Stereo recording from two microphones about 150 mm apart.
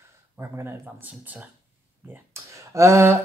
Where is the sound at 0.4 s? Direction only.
15° right (ahead or behind).